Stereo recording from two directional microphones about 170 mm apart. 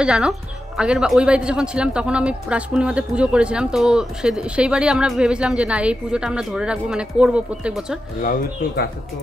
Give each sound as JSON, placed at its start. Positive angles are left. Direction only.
{"t": 0.0, "sound": "a man's voice", "side_deg": -5}
{"t": 8.2, "sound": "speech", "side_deg": 55}